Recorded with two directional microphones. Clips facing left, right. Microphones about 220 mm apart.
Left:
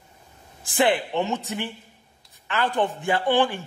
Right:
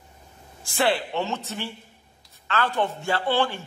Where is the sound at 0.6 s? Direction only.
15° left (ahead or behind).